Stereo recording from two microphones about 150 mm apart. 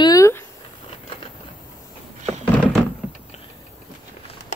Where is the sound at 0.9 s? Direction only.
40° left (ahead or behind).